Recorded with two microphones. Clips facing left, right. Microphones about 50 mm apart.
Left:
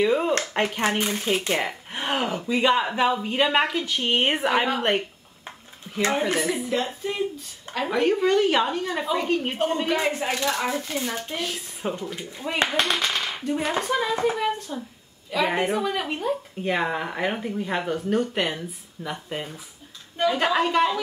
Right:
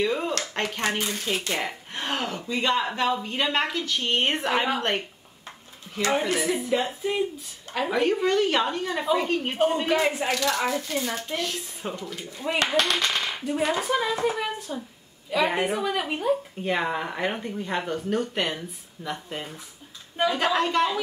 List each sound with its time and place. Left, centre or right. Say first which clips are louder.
0.0 s speech: left 4 dB; centre
1.3 s speech: left 4 dB; centre
5.9 s a sound: left 3 dB; centre
6.3 s speech: even; centre
10.2 s speech: even; centre
13.0 s gunshot: even; centre
13.4 s speech: even; centre